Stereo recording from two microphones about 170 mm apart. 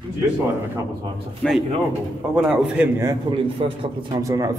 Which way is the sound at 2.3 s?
10° right (ahead or behind).